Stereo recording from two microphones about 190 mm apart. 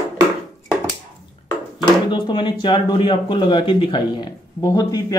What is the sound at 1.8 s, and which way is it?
Speech, 25° left (ahead or behind).